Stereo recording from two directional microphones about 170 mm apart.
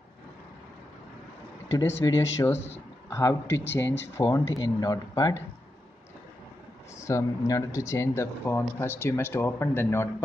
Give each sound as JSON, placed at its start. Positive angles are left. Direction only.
{"t": 1.9, "sound": "speech", "side_deg": 20}
{"t": 3.4, "sound": "speech", "side_deg": 90}
{"t": 3.7, "sound": "speech", "side_deg": 15}
{"t": 7.0, "sound": "speech", "side_deg": 15}